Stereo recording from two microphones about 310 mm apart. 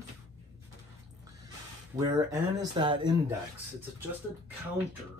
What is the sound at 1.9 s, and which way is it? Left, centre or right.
Speech, centre.